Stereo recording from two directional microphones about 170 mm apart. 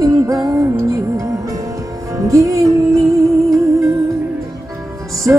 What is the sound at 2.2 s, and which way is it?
Music, 20° right (ahead or behind).